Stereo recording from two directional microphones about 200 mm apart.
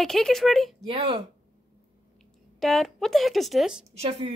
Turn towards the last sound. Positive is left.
turn(degrees=-30)  # may be behind; listen again after turning